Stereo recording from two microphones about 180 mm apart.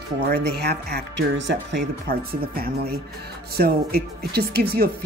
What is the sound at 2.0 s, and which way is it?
Speech, 55° right (ahead or behind).